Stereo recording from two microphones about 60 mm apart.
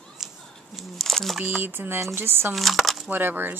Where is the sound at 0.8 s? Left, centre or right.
Centre.